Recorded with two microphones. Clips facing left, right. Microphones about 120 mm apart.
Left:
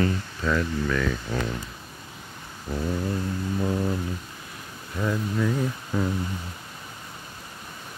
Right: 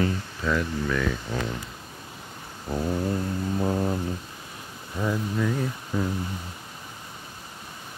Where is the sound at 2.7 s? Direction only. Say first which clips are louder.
Right 1 dB; 35° right (ahead or behind).